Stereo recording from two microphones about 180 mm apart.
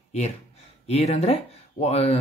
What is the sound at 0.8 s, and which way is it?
Speech, 35° left (ahead or behind).